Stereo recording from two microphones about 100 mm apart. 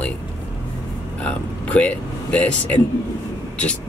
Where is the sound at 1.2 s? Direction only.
15° left (ahead or behind).